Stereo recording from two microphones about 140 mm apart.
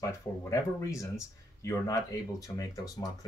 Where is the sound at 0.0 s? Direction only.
20° left (ahead or behind).